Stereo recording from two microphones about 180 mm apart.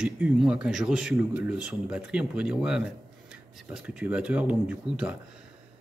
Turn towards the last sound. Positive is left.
turn(degrees=-5)  # may be behind; listen again after turning